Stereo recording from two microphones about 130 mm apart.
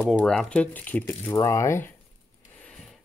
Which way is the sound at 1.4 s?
25° left (ahead or behind).